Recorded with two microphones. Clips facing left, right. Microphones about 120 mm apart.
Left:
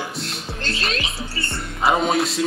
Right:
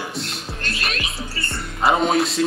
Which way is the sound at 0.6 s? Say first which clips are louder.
Left 2 dB; 30° left (ahead or behind).